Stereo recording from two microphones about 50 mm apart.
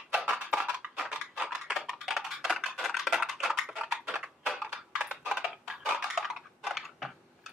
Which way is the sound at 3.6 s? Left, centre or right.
Centre.